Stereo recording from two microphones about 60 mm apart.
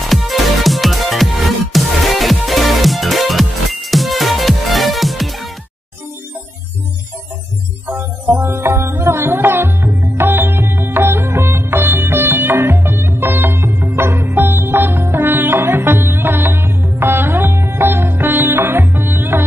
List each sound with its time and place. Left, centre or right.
0.0 s music: centre
7.9 s tabla: right
15.2 s music: right
16.0 s sitar: right
17.6 s music: right